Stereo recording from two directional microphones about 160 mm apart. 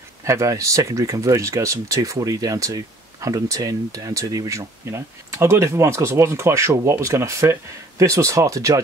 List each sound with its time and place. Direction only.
0.2 s speech: 20° right (ahead or behind)